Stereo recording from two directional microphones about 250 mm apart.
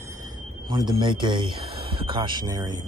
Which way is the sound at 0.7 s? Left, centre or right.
Centre.